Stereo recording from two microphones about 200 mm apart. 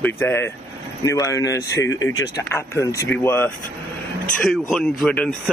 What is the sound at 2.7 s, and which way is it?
Speech, 15° left (ahead or behind).